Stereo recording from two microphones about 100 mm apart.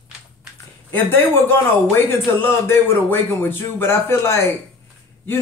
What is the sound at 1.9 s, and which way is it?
A man's voice, 25° left (ahead or behind).